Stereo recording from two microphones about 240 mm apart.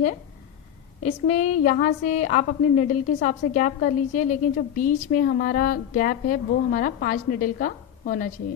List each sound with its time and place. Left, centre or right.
1.0 s a woman's voice: left